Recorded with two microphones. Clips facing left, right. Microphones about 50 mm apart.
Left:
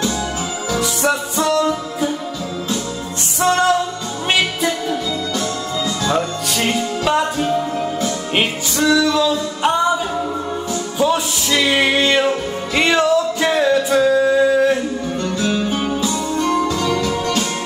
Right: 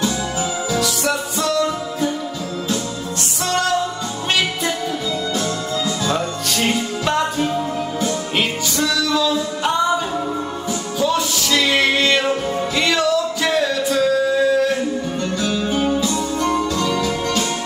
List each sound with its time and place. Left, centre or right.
0.7 s music: left
1.7 s music: centre
3.4 s music: left
6.0 s music: centre
8.4 s music: left
11.0 s music: centre